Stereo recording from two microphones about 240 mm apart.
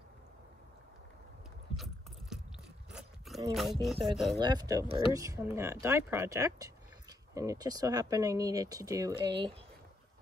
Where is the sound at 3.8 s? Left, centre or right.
Centre.